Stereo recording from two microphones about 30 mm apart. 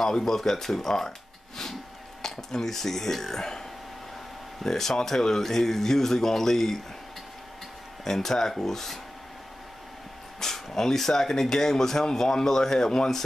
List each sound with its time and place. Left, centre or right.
0.0 s speech: centre
2.2 s speech: centre
4.6 s speech: centre
8.0 s speech: centre
10.4 s speech: centre